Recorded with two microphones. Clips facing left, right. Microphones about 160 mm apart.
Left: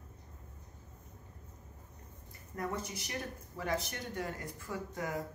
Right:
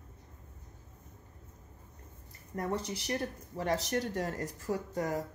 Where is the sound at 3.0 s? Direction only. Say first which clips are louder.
Right 6 dB; 35° right (ahead or behind).